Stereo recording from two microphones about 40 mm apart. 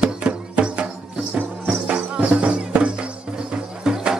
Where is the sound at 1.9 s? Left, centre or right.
Right.